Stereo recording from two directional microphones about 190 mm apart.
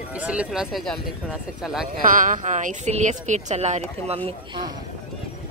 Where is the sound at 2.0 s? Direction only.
45° right (ahead or behind).